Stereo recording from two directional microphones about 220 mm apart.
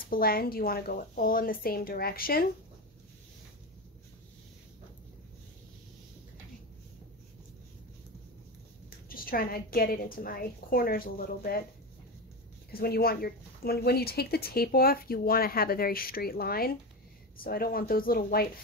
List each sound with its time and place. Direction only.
0.1 s speech: 45° left (ahead or behind)
9.1 s a woman's voice: 40° left (ahead or behind)
12.7 s speech: 45° left (ahead or behind)